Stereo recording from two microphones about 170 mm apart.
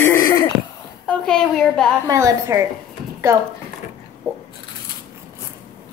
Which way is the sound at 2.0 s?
20° right (ahead or behind).